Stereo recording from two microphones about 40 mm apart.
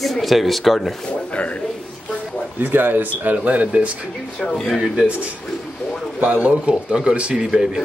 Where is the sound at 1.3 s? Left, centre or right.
Left.